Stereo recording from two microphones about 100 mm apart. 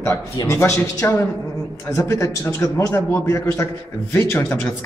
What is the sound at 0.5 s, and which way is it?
A man's voice, 25° left (ahead or behind).